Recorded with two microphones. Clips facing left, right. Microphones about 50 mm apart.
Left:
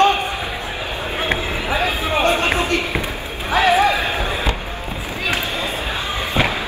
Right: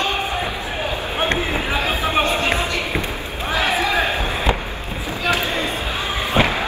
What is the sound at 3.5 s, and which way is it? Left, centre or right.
Run, left.